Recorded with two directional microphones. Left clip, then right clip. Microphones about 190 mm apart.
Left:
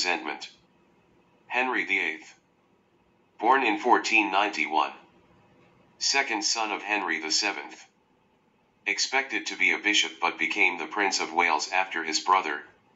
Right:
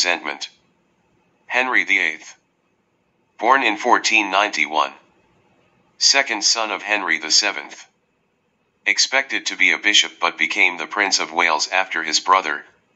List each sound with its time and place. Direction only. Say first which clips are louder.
0.0 s speech: right 8 dB; 25° right (ahead or behind)
1.5 s speech: right 9 dB; 25° right (ahead or behind)
3.3 s speech: right 6 dB; 25° right (ahead or behind)
5.9 s speech: right 9 dB; 25° right (ahead or behind)
8.8 s speech: right 9 dB; 25° right (ahead or behind)